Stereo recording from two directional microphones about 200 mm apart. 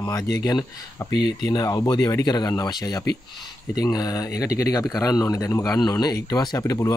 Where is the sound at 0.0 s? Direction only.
15° left (ahead or behind).